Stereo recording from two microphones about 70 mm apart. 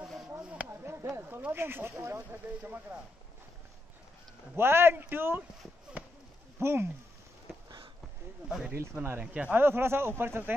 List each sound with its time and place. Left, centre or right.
0.4 s a sound: centre
0.7 s a sound: right
1.5 s speech: right
4.6 s speech: right
6.0 s a sound: right
6.6 s speech: right
8.9 s speech: right
9.2 s speech: centre
9.5 s speech: right